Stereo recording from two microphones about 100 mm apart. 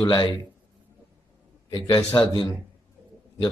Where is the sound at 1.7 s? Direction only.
50° left (ahead or behind).